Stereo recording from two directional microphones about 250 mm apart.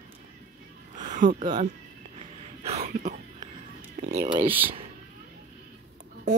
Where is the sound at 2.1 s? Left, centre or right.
Right.